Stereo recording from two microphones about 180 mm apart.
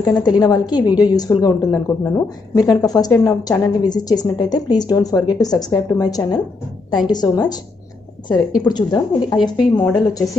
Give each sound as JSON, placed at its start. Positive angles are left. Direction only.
{"t": 0.2, "sound": "a woman's voice", "side_deg": 20}
{"t": 8.6, "sound": "a woman's voice", "side_deg": 25}